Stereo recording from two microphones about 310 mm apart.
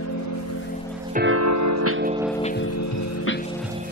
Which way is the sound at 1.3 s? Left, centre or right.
Right.